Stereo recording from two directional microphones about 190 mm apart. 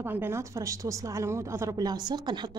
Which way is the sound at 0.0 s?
10° right (ahead or behind).